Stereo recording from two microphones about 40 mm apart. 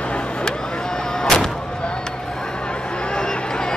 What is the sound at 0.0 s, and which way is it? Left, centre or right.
Artillery fire, left.